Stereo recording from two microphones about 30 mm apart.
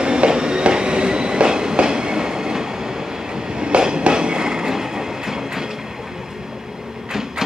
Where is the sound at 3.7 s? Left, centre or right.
Right; by 5.7 s centre.